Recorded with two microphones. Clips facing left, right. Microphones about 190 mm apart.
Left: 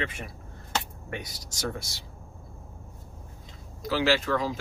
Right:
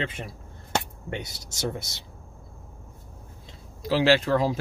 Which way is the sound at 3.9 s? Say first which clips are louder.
Right 4 dB; 35° right (ahead or behind).